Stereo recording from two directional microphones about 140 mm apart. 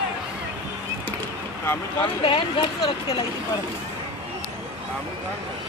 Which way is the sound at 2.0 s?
40° left (ahead or behind).